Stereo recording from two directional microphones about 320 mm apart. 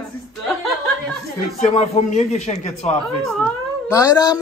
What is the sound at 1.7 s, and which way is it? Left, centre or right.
A man's voice, centre.